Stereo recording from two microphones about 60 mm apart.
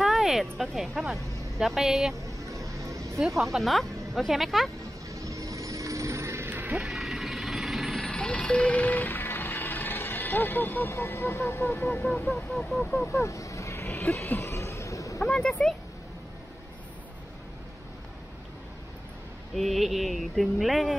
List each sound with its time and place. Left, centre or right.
0.0 s speech: centre
2.2 s music: right
3.2 s a sound: centre
5.1 s vehicle: right
6.5 s music: right
6.8 s vehicle: centre
8.1 s music: centre; by 11.0 s left
11.0 s speech: left
13.0 s vehicle: left
14.4 s a sound: left
15.2 s speech: centre
19.5 s a sound: centre